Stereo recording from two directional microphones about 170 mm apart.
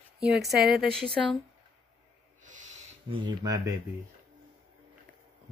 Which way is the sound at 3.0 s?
30° right (ahead or behind).